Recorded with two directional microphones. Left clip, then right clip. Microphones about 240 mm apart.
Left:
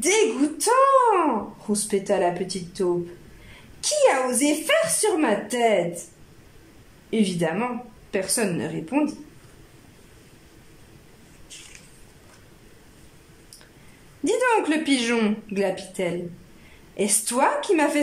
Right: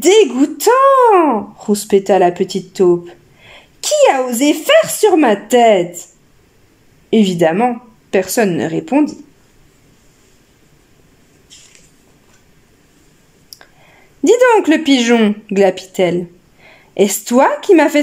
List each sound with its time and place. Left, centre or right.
0.0 s speech: right
7.1 s speech: right
14.2 s speech: right